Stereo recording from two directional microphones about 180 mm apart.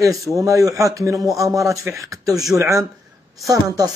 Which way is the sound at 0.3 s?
20° right (ahead or behind).